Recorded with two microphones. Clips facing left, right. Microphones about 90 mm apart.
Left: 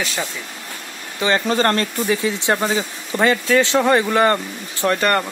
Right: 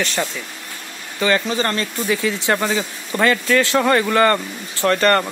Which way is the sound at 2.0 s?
25° left (ahead or behind).